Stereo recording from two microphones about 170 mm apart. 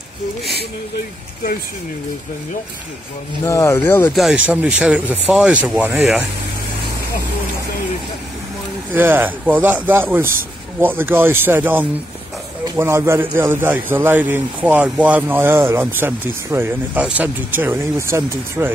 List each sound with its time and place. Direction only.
3.4 s speech: 15° left (ahead or behind)
4.1 s a man's voice: centre (ahead or behind)
8.9 s a man's voice: 10° right (ahead or behind)